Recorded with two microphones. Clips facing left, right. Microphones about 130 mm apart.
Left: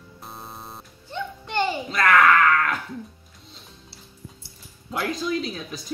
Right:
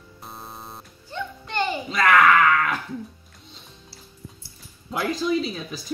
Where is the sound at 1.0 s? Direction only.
25° left (ahead or behind).